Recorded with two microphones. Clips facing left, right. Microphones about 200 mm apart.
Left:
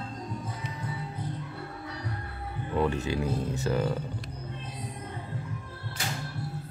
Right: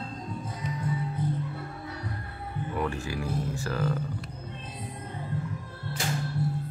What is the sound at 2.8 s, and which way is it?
Speech, 20° left (ahead or behind).